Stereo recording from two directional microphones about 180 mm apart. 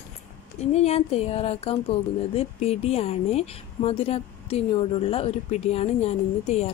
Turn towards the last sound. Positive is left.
turn(degrees=35)  # may be behind; listen again after turning